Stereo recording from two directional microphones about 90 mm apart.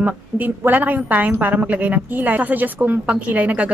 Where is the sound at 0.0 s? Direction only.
20° right (ahead or behind).